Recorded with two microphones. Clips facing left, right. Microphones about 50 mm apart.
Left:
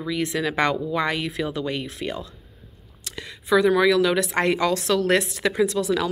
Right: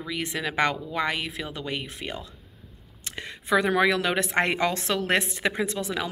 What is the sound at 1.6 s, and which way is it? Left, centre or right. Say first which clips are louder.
Speech: left 5 dB; centre.